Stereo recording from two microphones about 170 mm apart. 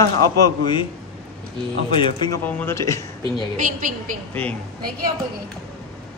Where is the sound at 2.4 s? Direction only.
15° left (ahead or behind).